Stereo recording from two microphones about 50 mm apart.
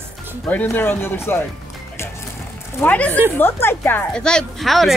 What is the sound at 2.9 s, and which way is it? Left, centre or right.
Speech, left.